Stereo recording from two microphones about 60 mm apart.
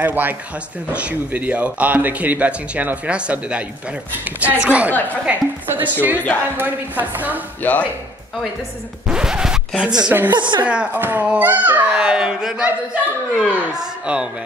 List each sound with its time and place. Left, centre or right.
0.0 s a woman's voice: right
5.7 s a woman's voice: right
6.2 s speech: left
6.6 s speech: right
7.6 s speech: left
9.0 s scratch: centre
9.8 s speech: centre
10.1 s a woman's voice: right